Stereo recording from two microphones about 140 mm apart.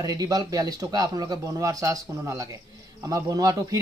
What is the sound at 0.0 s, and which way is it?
A man's voice, 25° right (ahead or behind).